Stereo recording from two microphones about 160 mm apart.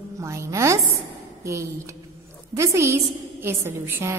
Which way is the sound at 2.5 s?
20° right (ahead or behind).